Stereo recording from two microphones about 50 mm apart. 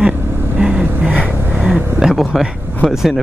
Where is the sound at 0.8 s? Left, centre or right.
Right.